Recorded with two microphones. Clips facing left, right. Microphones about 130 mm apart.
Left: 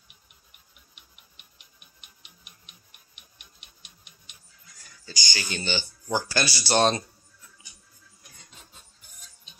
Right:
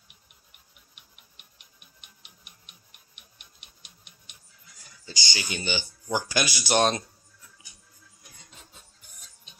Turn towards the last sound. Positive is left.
turn(degrees=-5)  # may be behind; listen again after turning